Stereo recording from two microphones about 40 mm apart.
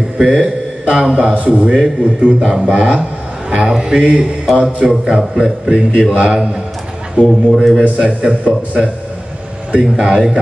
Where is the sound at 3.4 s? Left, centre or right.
Right.